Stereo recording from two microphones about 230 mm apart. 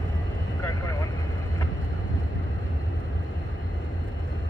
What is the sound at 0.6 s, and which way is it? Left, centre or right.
Vehicle, centre.